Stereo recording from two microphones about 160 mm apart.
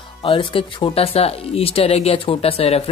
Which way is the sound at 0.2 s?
35° left (ahead or behind).